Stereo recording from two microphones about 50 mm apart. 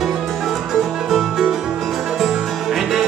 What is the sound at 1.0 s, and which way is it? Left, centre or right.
Music, centre.